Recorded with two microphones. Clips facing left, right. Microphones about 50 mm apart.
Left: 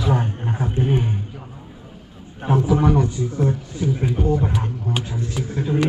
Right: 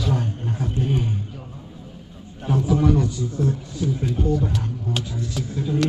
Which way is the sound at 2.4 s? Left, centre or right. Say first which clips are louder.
Left 2 dB; left.